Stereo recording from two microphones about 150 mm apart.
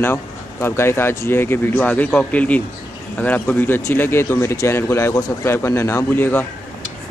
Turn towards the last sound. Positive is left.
turn(degrees=15)  # may be behind; listen again after turning